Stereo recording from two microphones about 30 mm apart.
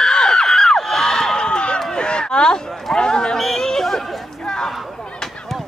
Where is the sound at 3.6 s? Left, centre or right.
Centre.